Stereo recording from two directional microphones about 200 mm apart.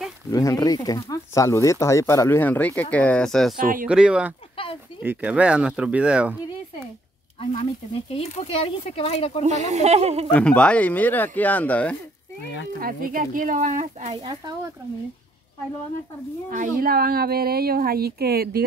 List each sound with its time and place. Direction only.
0.3 s speech: 15° left (ahead or behind)
3.5 s speech: 45° right (ahead or behind)
3.8 s speech: 5° right (ahead or behind)
7.5 s speech: 30° left (ahead or behind)
9.4 s speech: 35° right (ahead or behind)
10.3 s speech: 5° left (ahead or behind)
12.8 s speech: 45° right (ahead or behind)
14.2 s speech: 20° right (ahead or behind)
16.4 s speech: 45° right (ahead or behind)